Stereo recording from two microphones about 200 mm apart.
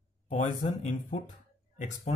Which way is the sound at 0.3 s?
40° left (ahead or behind).